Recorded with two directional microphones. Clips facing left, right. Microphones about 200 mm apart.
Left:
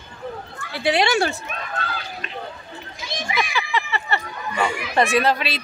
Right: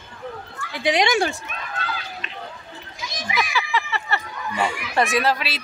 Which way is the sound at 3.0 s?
25° left (ahead or behind).